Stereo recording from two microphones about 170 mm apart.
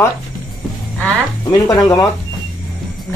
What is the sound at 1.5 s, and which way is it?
Speech, 20° left (ahead or behind).